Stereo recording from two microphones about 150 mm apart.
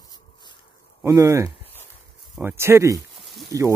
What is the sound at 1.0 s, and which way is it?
Speech, 25° right (ahead or behind).